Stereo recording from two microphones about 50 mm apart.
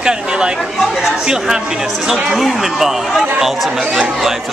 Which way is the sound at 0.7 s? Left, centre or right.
Centre.